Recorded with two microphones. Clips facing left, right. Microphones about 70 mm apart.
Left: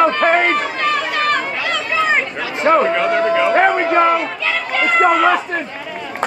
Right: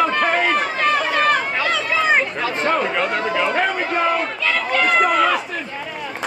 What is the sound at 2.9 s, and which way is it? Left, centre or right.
Speech, centre.